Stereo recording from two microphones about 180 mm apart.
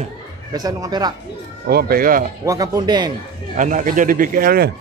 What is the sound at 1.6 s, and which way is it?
Speech, 55° right (ahead or behind).